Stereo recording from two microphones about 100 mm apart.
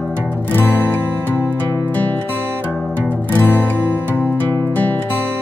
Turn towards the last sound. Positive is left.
turn(degrees=20)  # may be behind; listen again after turning